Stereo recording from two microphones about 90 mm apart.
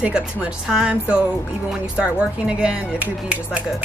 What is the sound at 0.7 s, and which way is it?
Speech, 10° right (ahead or behind).